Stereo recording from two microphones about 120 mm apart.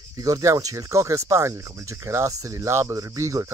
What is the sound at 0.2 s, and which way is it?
Speech, 30° right (ahead or behind).